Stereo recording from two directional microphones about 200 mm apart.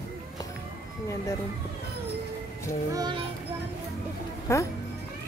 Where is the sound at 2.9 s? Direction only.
20° right (ahead or behind).